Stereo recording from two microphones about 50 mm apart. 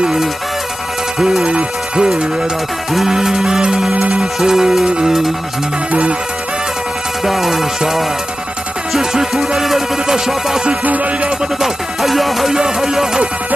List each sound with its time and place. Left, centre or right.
0.0 s music: centre
1.4 s music: right
2.9 s music: centre
3.9 s music: right
4.2 s music: centre
7.2 s music: centre
12.5 s music: centre